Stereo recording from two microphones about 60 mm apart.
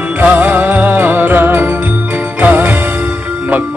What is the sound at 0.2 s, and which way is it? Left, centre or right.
Music, right.